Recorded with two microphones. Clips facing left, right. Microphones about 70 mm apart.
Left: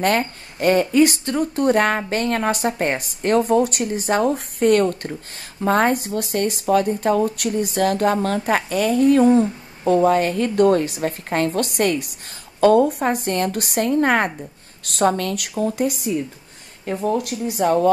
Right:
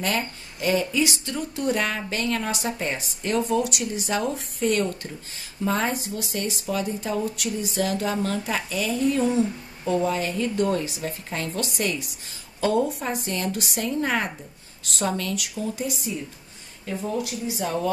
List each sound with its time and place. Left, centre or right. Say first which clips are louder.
0.0 s speech: left 7 dB; left